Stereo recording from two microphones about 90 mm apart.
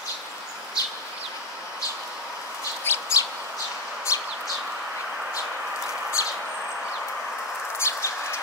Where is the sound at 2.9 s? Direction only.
25° left (ahead or behind).